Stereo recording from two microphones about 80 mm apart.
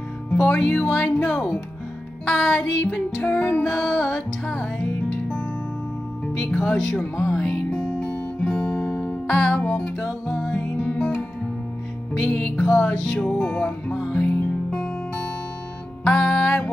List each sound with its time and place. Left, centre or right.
0.5 s music: centre
3.3 s music: left
3.6 s music: centre
6.2 s music: centre
16.0 s music: centre